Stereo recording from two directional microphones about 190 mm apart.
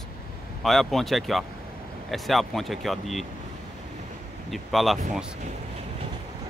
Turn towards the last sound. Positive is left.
turn(degrees=0)  # may be behind; listen again after turning